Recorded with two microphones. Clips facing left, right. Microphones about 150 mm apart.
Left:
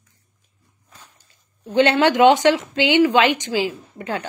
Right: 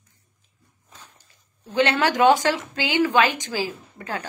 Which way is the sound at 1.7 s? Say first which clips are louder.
Left 5 dB; 30° left (ahead or behind).